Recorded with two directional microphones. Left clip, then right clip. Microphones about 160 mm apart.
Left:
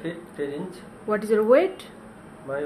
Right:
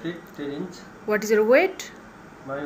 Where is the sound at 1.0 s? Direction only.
10° left (ahead or behind).